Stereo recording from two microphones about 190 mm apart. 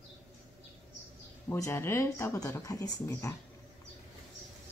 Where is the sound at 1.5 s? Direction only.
15° left (ahead or behind).